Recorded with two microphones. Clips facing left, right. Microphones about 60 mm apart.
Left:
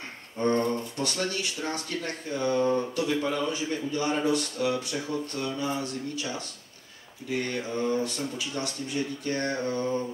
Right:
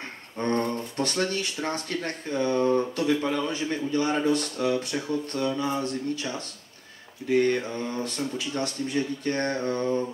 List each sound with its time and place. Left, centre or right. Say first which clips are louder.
0.4 s speech: left 1 dB; right
5.6 s a sound: right 3 dB; right
7.2 s speech: right 7 dB; right